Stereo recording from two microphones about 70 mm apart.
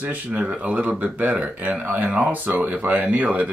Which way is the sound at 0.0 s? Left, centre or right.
Right.